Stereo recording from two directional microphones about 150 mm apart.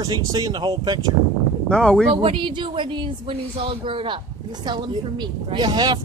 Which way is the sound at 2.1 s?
35° right (ahead or behind).